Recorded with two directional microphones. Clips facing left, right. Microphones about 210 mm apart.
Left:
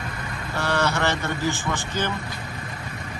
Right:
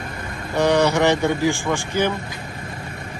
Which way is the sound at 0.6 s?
15° right (ahead or behind).